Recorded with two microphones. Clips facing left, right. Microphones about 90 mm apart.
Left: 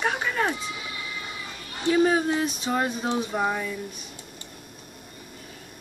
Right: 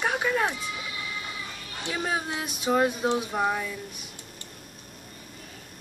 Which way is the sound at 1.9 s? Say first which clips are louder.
Left 9 dB; centre (ahead or behind).